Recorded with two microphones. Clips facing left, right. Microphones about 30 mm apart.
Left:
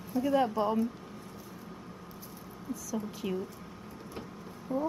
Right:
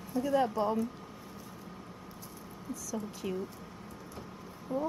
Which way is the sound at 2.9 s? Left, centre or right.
Centre.